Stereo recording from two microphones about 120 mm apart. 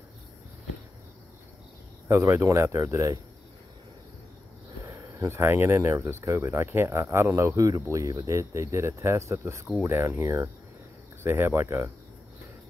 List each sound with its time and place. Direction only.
2.0 s speech: 25° right (ahead or behind)
4.8 s speech: 25° right (ahead or behind)